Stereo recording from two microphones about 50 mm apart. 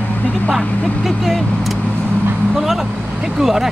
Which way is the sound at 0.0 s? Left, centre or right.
Left.